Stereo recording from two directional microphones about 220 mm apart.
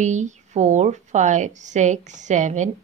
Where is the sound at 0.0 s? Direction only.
35° right (ahead or behind).